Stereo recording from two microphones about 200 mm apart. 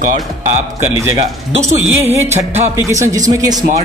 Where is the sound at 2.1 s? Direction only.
35° right (ahead or behind).